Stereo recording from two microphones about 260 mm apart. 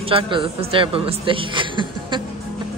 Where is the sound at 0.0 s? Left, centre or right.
Centre.